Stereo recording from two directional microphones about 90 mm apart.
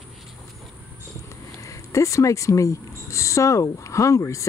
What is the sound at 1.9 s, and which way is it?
Speech, 35° left (ahead or behind).